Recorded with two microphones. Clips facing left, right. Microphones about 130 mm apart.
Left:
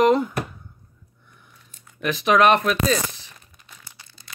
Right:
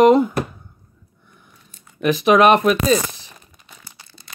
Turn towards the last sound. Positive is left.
turn(degrees=-30)  # may be behind; listen again after turning